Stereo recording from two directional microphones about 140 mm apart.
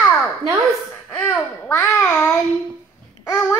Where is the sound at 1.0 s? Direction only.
10° left (ahead or behind).